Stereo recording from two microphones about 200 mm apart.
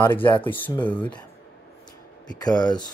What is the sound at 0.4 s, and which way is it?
Speech, 10° left (ahead or behind).